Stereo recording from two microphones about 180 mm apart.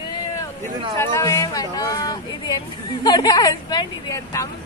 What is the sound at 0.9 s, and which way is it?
Speech, 15° left (ahead or behind).